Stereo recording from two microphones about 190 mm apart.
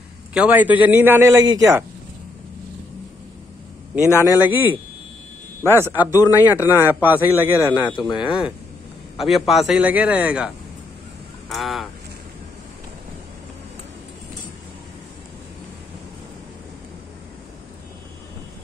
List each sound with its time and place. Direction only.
0.3 s a man's voice: 5° right (ahead or behind)
4.1 s speech: 15° left (ahead or behind)
5.7 s speech: 10° left (ahead or behind)
6.8 s a man's voice: 10° right (ahead or behind)
7.6 s speech: 25° left (ahead or behind)
9.1 s a man's voice: centre (ahead or behind)